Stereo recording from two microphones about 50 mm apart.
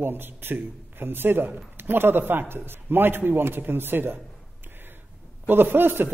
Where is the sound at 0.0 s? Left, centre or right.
Right.